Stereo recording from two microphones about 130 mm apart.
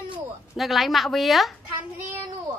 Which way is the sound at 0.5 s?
Centre (ahead or behind).